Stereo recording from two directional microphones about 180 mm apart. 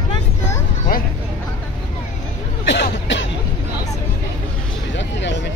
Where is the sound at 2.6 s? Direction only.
75° left (ahead or behind).